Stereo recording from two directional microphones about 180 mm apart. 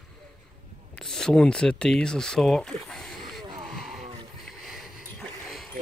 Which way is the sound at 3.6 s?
Centre (ahead or behind).